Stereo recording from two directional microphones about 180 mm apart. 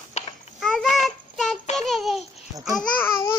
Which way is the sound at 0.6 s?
Centre (ahead or behind).